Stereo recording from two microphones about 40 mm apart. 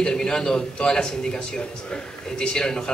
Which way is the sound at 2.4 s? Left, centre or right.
Centre.